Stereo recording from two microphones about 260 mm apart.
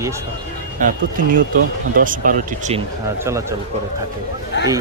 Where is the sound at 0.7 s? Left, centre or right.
Right.